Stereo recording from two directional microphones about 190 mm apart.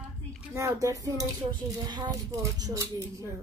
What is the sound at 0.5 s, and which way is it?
Speech, 15° right (ahead or behind).